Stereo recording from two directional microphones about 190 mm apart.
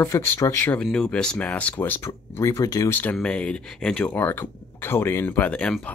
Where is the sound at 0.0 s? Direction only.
10° left (ahead or behind).